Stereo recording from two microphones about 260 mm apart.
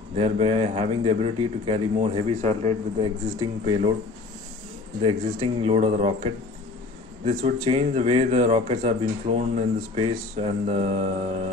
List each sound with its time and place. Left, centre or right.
0.2 s a man's voice: right
5.0 s a man's voice: right